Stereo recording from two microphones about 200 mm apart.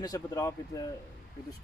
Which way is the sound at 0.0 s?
15° left (ahead or behind).